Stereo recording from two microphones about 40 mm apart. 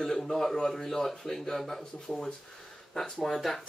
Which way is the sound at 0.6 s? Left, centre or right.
Centre.